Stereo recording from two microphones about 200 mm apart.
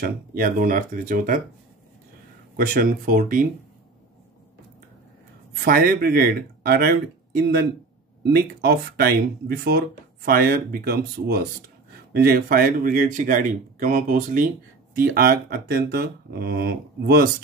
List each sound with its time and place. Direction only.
0.0 s speech: 45° right (ahead or behind)
2.5 s speech: 45° right (ahead or behind)
5.5 s speech: 45° right (ahead or behind)
8.2 s speech: 55° right (ahead or behind)